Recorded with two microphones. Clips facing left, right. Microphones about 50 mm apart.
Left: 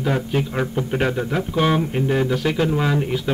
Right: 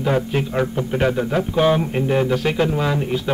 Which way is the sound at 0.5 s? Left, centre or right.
Centre.